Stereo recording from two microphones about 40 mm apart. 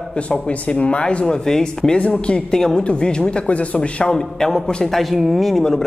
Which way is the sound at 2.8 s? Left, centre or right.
Left.